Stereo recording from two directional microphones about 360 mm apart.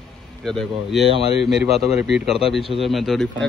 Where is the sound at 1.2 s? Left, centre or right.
Centre.